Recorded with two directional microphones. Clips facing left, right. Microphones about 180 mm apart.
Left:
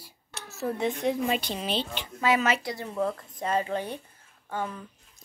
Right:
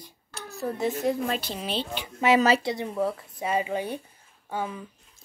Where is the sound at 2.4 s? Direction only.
30° right (ahead or behind).